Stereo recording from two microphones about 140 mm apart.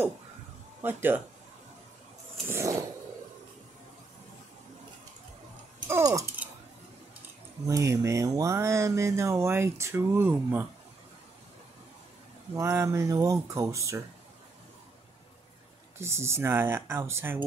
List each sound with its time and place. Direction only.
0.8 s speech: 15° right (ahead or behind)
2.4 s speech: 20° right (ahead or behind)
5.9 s speech: 20° right (ahead or behind)
7.6 s speech: 20° right (ahead or behind)
12.5 s speech: 20° right (ahead or behind)
16.0 s speech: 20° right (ahead or behind)